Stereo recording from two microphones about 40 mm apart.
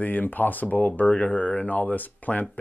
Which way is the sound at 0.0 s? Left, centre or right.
Left.